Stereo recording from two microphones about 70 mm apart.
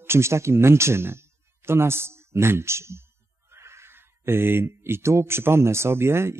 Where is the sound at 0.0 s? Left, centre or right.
Right.